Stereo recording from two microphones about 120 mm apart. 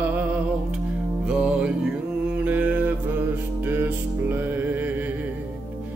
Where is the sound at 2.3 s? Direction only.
15° right (ahead or behind).